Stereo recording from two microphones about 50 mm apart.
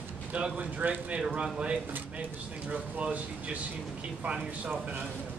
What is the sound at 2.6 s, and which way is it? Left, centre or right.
Speech, right.